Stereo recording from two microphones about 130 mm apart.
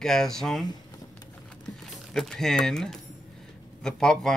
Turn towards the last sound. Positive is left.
turn(degrees=5)  # may be behind; listen again after turning